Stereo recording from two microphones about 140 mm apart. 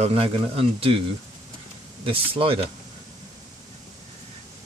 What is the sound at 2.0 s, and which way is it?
Speech, 40° right (ahead or behind).